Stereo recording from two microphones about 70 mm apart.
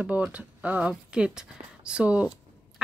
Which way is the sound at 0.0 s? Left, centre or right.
Centre.